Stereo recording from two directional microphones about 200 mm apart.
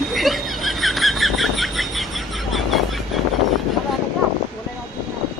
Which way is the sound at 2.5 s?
Centre (ahead or behind).